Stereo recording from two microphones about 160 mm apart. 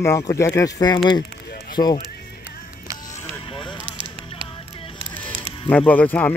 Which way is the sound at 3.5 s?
30° left (ahead or behind).